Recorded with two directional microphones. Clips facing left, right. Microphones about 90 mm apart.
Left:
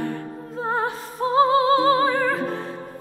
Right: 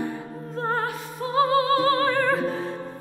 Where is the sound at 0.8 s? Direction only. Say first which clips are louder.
Left 4 dB; 25° left (ahead or behind).